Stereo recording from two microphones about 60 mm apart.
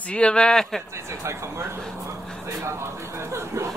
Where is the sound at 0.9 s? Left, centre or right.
Right.